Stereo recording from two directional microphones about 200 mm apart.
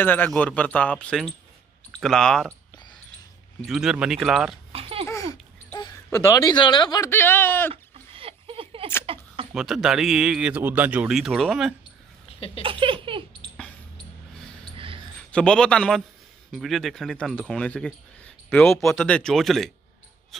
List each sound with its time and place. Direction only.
0.0 s speech: 10° left (ahead or behind)
3.6 s speech: centre (ahead or behind)
4.7 s babbling: 30° right (ahead or behind)
5.3 s babbling: 20° left (ahead or behind)
6.1 s speech: 15° left (ahead or behind)
7.7 s a sound: 30° right (ahead or behind)
9.5 s speech: centre (ahead or behind)
12.3 s a sound: 30° left (ahead or behind)
12.6 s giggle: 25° right (ahead or behind)
15.1 s a man's voice: 5° left (ahead or behind)